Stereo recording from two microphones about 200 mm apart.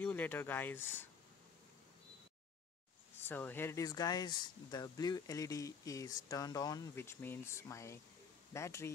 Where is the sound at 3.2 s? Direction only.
10° left (ahead or behind).